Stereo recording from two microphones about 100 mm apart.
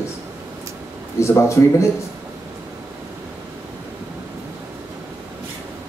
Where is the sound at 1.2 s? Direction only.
30° left (ahead or behind).